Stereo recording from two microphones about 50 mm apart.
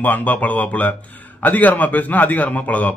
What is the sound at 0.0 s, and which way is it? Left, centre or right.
A man's voice, left.